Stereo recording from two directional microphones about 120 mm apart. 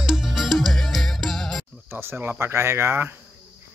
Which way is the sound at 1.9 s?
20° right (ahead or behind).